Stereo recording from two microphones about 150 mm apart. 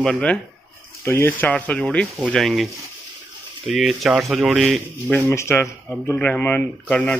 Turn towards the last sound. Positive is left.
turn(degrees=10)  # may be behind; listen again after turning